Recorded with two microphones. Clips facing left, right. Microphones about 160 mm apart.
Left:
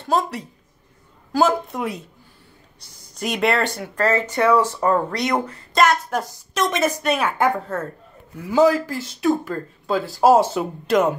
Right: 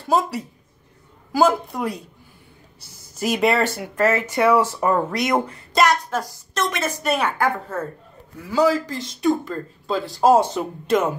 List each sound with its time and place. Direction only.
0.1 s speech: 5° right (ahead or behind)
6.1 s a woman's voice: 15° left (ahead or behind)
7.0 s speech: centre (ahead or behind)
8.5 s speech: 15° left (ahead or behind); by 11.1 s centre (ahead or behind)